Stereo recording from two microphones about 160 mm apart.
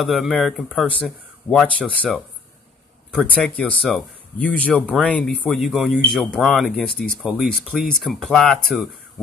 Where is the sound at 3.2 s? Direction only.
10° left (ahead or behind).